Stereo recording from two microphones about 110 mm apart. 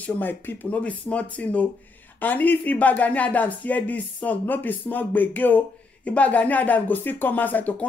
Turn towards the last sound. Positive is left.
turn(degrees=15)  # may be behind; listen again after turning